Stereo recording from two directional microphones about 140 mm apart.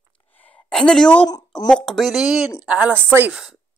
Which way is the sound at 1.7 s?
5° left (ahead or behind).